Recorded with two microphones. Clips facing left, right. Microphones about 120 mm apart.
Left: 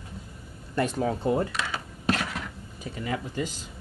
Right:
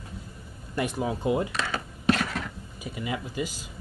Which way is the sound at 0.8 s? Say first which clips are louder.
Left 2 dB; 15° right (ahead or behind).